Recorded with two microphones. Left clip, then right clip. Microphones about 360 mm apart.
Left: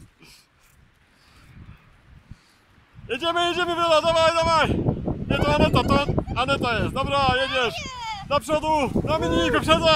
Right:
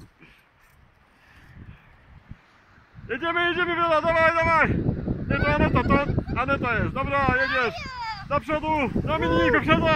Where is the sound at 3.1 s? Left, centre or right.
Centre.